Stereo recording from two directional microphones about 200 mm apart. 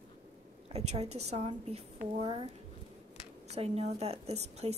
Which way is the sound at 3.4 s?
30° right (ahead or behind).